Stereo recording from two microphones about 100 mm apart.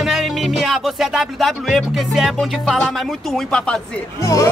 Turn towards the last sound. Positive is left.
turn(degrees=30)  # may be behind; listen again after turning